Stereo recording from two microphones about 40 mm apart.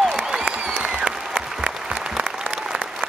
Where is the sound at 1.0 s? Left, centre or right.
Centre.